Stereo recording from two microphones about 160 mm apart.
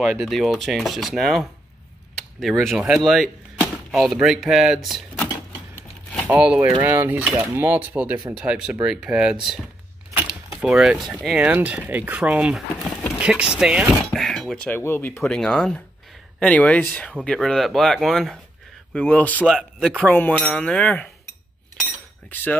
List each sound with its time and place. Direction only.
0.2 s speech: centre (ahead or behind)
5.3 s typewriter: 15° left (ahead or behind)
6.2 s speech: 10° right (ahead or behind)
6.7 s speech: 20° right (ahead or behind)
10.1 s a sound: 5° right (ahead or behind)
11.2 s speech: 10° right (ahead or behind)
14.8 s speech: 15° left (ahead or behind)
16.3 s cutlery: 10° left (ahead or behind)
17.2 s speech: 5° left (ahead or behind)
18.9 s cutlery: 10° left (ahead or behind)
19.4 s speech: centre (ahead or behind)
20.1 s cutlery: 10° left (ahead or behind)
22.3 s cutlery: 10° left (ahead or behind)